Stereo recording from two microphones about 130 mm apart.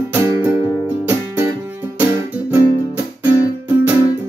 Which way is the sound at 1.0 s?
15° right (ahead or behind).